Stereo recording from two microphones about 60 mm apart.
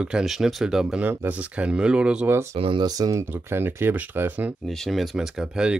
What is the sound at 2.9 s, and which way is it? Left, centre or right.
Speech, right.